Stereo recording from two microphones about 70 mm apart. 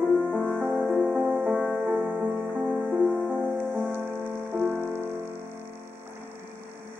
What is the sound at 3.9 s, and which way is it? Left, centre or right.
Music, right.